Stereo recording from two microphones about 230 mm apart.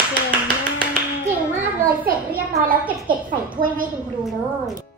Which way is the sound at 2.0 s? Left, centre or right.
Right.